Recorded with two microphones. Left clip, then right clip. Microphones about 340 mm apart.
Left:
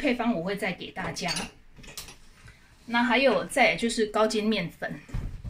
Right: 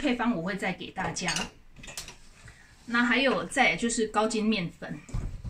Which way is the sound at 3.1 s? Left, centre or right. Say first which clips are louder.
Left 6 dB; centre.